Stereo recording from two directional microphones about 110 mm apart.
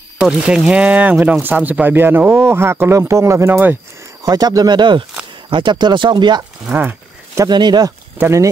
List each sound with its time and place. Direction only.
0.2 s speech: 10° right (ahead or behind)
4.2 s speech: 35° right (ahead or behind)
6.6 s speech: 15° right (ahead or behind)
7.3 s speech: 40° right (ahead or behind)
8.2 s speech: 25° right (ahead or behind)